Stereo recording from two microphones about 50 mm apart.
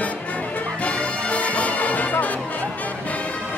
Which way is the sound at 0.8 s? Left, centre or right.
Left.